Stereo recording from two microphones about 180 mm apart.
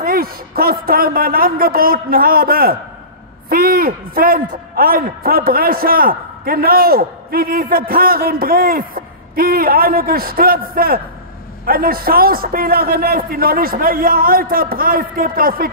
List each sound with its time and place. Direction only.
0.0 s a man's voice: 55° right (ahead or behind)